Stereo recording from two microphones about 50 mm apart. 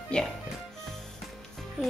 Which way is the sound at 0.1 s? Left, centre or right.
Centre.